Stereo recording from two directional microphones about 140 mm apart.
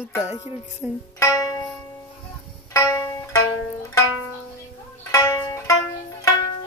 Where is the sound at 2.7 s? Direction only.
25° left (ahead or behind).